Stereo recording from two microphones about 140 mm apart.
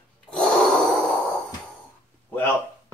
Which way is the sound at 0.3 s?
5° left (ahead or behind).